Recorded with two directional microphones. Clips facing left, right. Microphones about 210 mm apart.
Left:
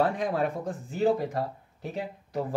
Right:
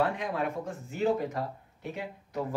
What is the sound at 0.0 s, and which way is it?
Speech, 35° left (ahead or behind).